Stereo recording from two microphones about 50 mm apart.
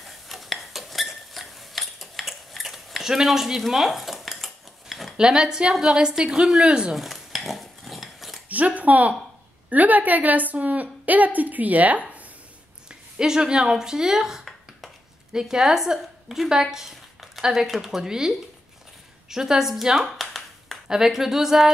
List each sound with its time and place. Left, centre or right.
0.0 s cutlery: centre
5.1 s a woman's voice: centre
7.0 s cutlery: centre
8.5 s a woman's voice: right
13.2 s a woman's voice: centre
16.7 s a sound: centre
17.6 s a woman's voice: centre
19.3 s a woman's voice: centre
20.1 s a sound: centre
20.9 s a woman's voice: centre